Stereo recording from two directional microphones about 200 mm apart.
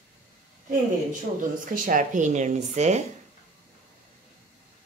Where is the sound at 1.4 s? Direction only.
40° right (ahead or behind).